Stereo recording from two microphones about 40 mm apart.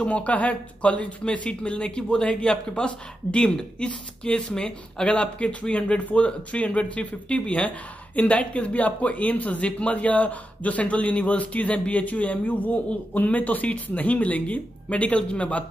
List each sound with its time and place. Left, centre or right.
0.0 s speech: left